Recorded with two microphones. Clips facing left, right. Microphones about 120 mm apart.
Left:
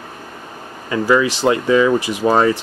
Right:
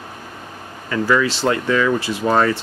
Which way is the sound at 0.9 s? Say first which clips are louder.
Left 2 dB; 15° left (ahead or behind).